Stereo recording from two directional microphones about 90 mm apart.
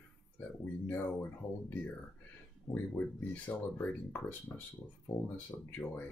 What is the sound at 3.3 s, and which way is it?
Speech, 20° left (ahead or behind).